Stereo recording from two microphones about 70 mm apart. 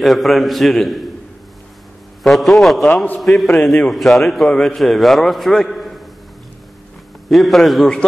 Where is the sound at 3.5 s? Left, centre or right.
Centre.